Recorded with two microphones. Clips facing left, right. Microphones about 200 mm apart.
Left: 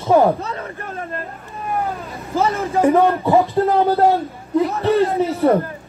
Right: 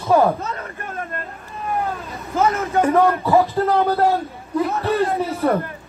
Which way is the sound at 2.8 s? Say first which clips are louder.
Left 3 dB; 15° left (ahead or behind).